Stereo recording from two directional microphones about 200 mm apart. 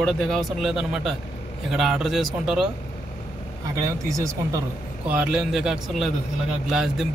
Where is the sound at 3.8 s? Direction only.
15° right (ahead or behind).